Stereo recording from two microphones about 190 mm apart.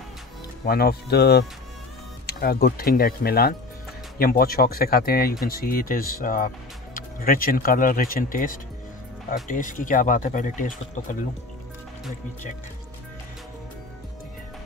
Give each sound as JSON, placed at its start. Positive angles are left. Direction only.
{"t": 0.7, "sound": "speech", "side_deg": 55}